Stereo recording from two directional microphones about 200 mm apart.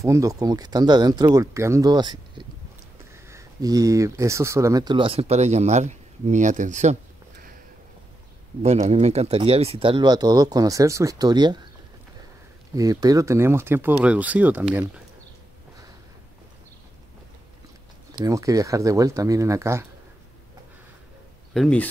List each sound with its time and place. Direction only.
0.0 s speech: 15° right (ahead or behind); by 7.0 s 35° right (ahead or behind)
8.9 s speech: 35° right (ahead or behind)
12.7 s speech: 15° right (ahead or behind)
18.1 s speech: 15° right (ahead or behind)
21.5 s speech: 5° left (ahead or behind)